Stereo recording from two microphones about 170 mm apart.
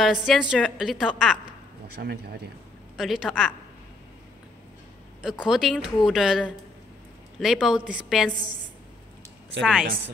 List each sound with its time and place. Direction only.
0.0 s a woman's voice: centre (ahead or behind)
2.0 s speech: 70° right (ahead or behind)
3.0 s a woman's voice: centre (ahead or behind)
5.4 s a woman's voice: 5° right (ahead or behind)
9.6 s a woman's voice: centre (ahead or behind)